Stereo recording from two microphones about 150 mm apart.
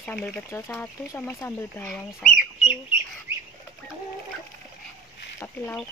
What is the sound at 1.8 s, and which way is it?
Speech, centre (ahead or behind).